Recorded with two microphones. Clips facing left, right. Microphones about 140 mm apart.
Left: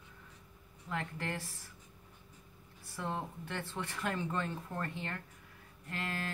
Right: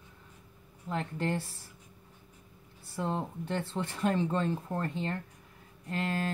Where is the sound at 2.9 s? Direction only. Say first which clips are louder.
Right 5 dB; 25° right (ahead or behind).